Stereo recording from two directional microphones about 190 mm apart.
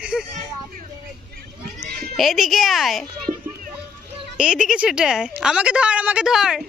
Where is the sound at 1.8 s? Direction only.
55° right (ahead or behind).